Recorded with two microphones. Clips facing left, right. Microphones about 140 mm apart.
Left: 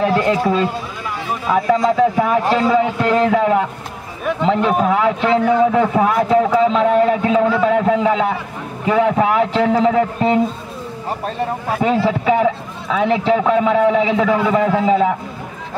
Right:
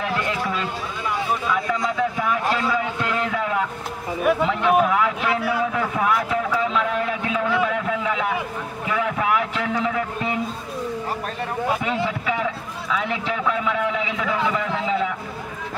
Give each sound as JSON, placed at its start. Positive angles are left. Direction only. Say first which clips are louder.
{"t": 0.0, "sound": "run", "louder": "left 9 dB", "side_deg": 35}
{"t": 1.5, "sound": "a man's voice", "louder": "left 8 dB", "side_deg": 35}
{"t": 4.2, "sound": "a man's voice", "louder": "right 1 dB", "side_deg": -5}
{"t": 4.5, "sound": "a man's voice", "louder": "left 3 dB", "side_deg": 30}
{"t": 11.8, "sound": "a man's voice", "louder": "left 8 dB", "side_deg": 35}